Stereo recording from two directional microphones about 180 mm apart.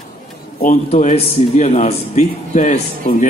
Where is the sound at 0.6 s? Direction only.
40° left (ahead or behind).